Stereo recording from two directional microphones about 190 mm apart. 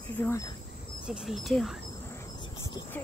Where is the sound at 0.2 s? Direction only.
15° left (ahead or behind).